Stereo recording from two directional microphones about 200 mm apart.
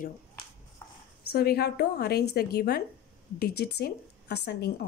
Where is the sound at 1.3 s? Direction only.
50° left (ahead or behind).